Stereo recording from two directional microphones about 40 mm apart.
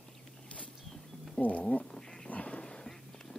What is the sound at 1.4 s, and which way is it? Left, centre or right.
Speech, left.